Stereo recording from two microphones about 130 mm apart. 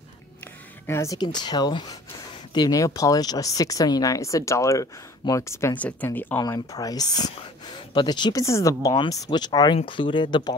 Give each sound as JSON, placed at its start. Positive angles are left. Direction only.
{"t": 0.8, "sound": "speech", "side_deg": 20}
{"t": 6.4, "sound": "speech", "side_deg": 30}